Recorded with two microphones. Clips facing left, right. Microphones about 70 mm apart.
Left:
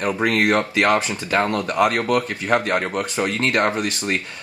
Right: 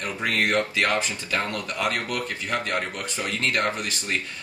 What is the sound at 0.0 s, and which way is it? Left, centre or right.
Speech, left.